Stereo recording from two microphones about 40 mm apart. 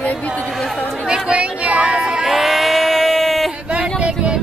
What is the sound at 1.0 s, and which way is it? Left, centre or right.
Chatter, right.